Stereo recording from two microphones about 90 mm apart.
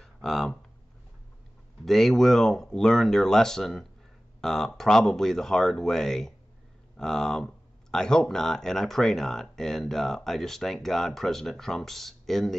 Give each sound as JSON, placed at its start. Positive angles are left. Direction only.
{"t": 0.0, "sound": "speech", "side_deg": 5}
{"t": 1.9, "sound": "speech", "side_deg": 5}